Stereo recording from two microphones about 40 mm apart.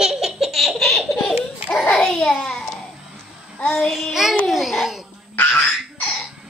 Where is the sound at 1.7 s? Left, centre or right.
Left.